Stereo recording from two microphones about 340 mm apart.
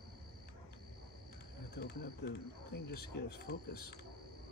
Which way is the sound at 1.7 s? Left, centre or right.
Left.